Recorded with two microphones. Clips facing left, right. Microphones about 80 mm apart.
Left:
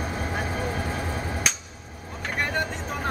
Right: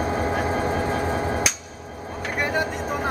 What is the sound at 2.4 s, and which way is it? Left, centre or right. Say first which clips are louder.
Vehicle: right 3 dB; centre.